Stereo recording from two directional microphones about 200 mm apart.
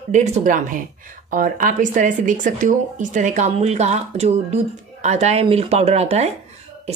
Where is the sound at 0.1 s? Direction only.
35° right (ahead or behind).